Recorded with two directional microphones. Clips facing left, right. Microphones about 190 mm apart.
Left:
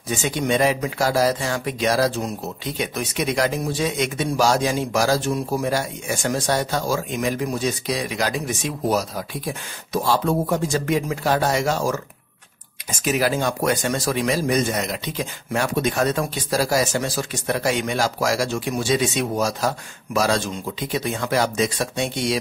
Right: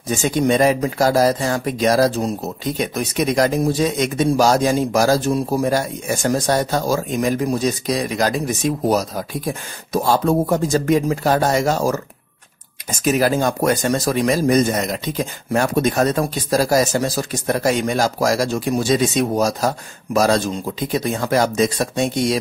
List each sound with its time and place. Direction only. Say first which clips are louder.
0.1 s speech: right 5 dB; 40° right (ahead or behind)
13.0 s speech: right 4 dB; 45° right (ahead or behind)